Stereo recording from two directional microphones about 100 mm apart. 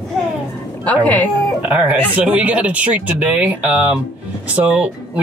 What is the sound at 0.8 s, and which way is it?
Speech, 15° left (ahead or behind).